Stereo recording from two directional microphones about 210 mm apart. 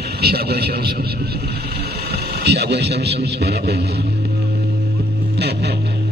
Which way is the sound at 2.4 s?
55° right (ahead or behind).